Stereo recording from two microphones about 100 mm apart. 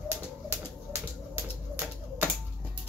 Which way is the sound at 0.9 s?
20° right (ahead or behind).